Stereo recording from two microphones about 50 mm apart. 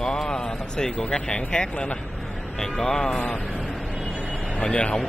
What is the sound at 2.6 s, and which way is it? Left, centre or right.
Speech, centre.